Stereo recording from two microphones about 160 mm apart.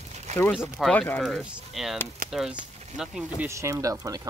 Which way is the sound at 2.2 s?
65° right (ahead or behind).